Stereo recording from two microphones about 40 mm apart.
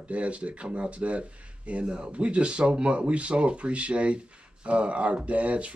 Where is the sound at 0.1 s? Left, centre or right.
Right.